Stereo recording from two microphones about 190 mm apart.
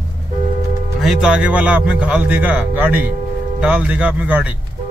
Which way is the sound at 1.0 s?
Centre (ahead or behind).